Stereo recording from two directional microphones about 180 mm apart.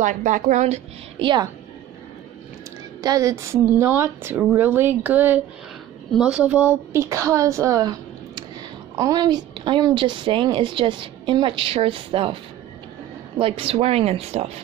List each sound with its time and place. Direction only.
0.0 s speech: 45° right (ahead or behind)
1.2 s a woman's voice: 25° right (ahead or behind)
3.0 s a woman's voice: 20° right (ahead or behind)
13.4 s speech: 30° right (ahead or behind)